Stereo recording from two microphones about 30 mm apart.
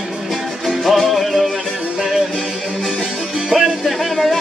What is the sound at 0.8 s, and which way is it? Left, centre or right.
Music, centre.